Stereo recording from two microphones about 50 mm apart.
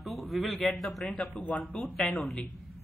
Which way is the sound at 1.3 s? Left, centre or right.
Left.